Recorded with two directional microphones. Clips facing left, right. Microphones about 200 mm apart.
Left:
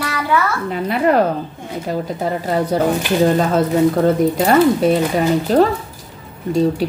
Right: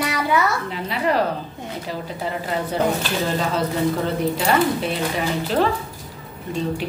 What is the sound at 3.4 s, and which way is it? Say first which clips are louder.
Speech: left 7 dB; 50° left (ahead or behind).